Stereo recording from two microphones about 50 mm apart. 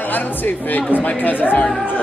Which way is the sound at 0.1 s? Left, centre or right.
Left.